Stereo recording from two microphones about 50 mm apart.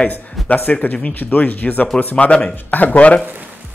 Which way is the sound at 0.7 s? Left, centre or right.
Left.